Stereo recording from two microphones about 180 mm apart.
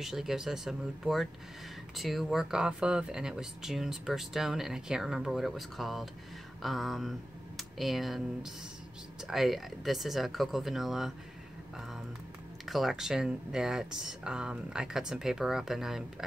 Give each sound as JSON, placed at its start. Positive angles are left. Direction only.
{"t": 0.0, "sound": "speech", "side_deg": 0}
{"t": 12.6, "sound": "speech", "side_deg": 0}